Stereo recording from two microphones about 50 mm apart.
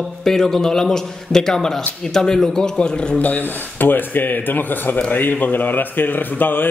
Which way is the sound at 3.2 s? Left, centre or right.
Left.